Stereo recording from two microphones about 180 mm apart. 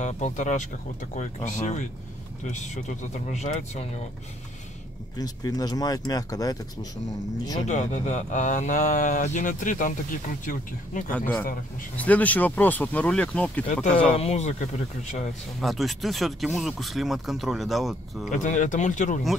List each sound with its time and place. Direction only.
0.0 s speech: 40° left (ahead or behind)
5.1 s speech: 20° left (ahead or behind)
7.6 s speech: 40° left (ahead or behind)
11.1 s speech: 10° left (ahead or behind)
14.1 s speech: 35° left (ahead or behind)
15.6 s speech: centre (ahead or behind)
18.3 s speech: 45° left (ahead or behind)